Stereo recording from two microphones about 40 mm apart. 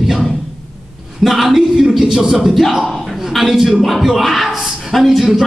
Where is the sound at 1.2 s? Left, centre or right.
Centre.